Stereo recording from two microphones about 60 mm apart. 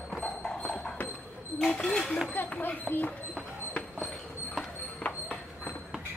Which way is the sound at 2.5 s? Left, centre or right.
Left.